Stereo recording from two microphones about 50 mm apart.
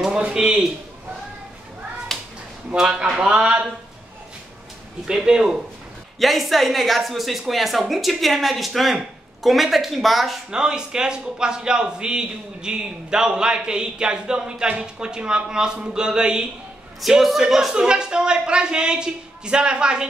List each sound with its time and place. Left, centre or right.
0.3 s a man's voice: centre
2.1 s a sound: centre
2.7 s a man's voice: centre
5.0 s a man's voice: centre
6.1 s a woman's voice: centre
10.5 s a man's voice: centre
17.2 s a man's voice: centre